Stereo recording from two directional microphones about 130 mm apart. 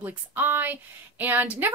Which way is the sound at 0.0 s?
15° right (ahead or behind).